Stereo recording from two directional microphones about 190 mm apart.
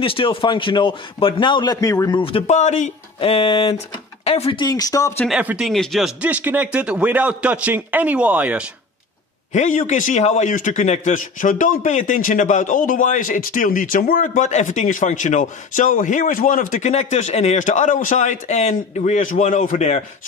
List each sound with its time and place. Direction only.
0.0 s a man's voice: 30° left (ahead or behind)
5.2 s speech: 5° right (ahead or behind)
9.5 s a man's voice: 40° left (ahead or behind)